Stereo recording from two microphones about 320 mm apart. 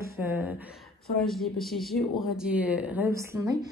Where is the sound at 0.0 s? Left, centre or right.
Centre.